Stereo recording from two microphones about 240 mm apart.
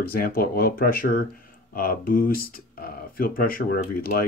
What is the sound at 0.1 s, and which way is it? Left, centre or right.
Speech, left.